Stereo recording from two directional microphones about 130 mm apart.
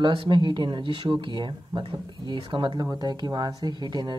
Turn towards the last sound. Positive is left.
turn(degrees=-30)  # may be behind; listen again after turning